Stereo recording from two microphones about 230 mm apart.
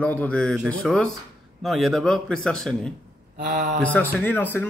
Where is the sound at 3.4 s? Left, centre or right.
Right.